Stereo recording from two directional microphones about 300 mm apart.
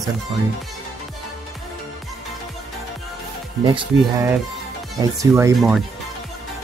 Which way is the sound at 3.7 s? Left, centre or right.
Centre.